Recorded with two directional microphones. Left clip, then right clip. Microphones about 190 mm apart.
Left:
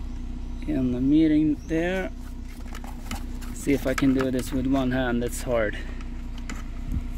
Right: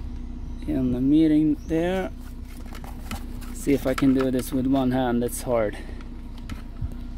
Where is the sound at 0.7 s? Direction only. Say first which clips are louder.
Right 1 dB; 15° right (ahead or behind).